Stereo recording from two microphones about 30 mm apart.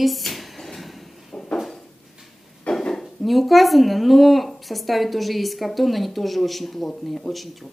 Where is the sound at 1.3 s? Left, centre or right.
Centre.